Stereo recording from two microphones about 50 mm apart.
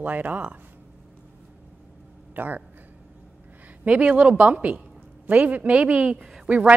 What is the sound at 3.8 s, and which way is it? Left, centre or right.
A woman's voice, right.